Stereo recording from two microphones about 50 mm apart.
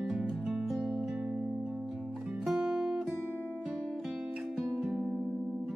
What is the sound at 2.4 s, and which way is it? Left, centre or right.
Music, centre.